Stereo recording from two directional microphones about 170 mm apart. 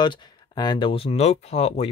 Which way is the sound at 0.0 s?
25° left (ahead or behind).